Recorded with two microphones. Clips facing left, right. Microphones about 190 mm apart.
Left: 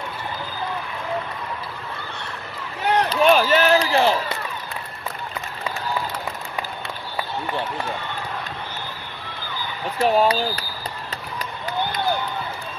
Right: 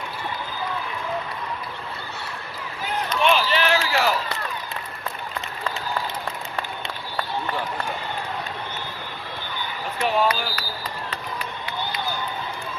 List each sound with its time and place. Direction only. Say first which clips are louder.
2.8 s rowboat: left 8 dB; 70° left (ahead or behind)
3.1 s run: left 3 dB; 40° left (ahead or behind)
10.0 s speech: left 4 dB; 35° left (ahead or behind)